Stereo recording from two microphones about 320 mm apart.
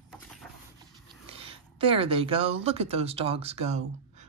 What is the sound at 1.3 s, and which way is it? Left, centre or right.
Speech, centre.